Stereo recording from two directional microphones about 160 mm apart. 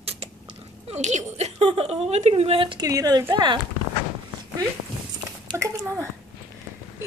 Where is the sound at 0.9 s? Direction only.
45° right (ahead or behind).